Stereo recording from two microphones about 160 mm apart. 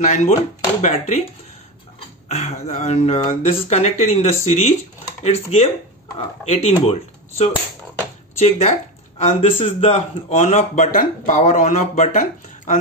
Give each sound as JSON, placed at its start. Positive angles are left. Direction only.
{"t": 0.0, "sound": "a man's voice", "side_deg": 50}